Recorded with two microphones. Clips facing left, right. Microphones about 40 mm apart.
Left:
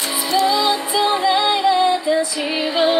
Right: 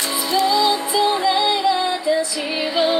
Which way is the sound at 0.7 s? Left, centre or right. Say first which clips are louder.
Even; left.